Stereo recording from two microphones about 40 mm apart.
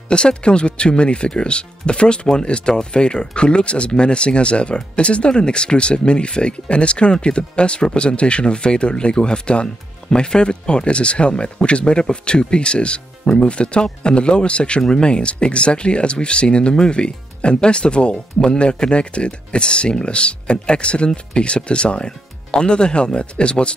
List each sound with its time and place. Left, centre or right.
0.1 s speech: left